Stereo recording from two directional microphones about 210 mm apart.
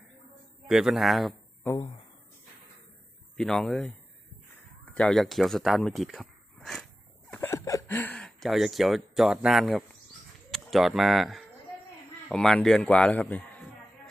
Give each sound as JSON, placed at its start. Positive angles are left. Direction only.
{"t": 0.7, "sound": "speech", "side_deg": 0}
{"t": 3.3, "sound": "a man's voice", "side_deg": 5}
{"t": 4.8, "sound": "a sound", "side_deg": 5}
{"t": 7.3, "sound": "a man's voice", "side_deg": 15}